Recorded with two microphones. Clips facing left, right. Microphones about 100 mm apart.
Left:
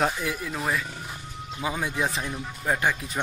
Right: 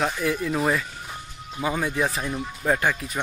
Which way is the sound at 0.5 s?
Centre (ahead or behind).